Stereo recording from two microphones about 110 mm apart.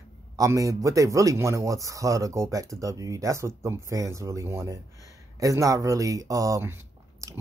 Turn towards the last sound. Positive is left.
turn(degrees=-30)  # may be behind; listen again after turning